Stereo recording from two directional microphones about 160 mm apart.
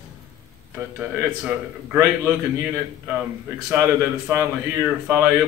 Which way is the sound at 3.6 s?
15° right (ahead or behind).